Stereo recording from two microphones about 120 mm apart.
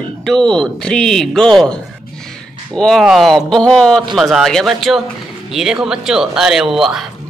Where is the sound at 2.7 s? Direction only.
5° left (ahead or behind).